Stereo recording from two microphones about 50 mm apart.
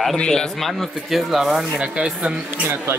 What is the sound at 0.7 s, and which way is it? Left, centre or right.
Speech, centre.